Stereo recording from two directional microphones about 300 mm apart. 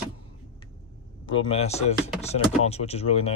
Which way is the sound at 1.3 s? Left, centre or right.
Centre.